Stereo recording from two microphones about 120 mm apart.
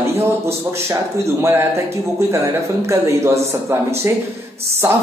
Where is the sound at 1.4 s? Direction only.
20° right (ahead or behind).